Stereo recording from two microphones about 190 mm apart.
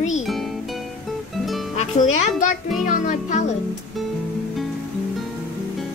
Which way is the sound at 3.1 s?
40° left (ahead or behind).